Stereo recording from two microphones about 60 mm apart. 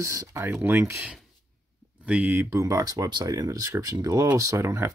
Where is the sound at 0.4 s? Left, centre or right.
Right.